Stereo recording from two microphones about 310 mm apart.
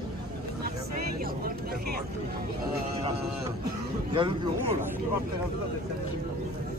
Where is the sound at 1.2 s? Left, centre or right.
Right.